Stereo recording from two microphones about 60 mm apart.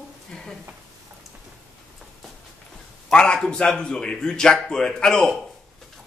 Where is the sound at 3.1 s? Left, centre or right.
Centre.